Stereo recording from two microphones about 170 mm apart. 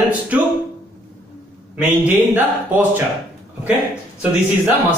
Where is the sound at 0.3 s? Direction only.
10° right (ahead or behind).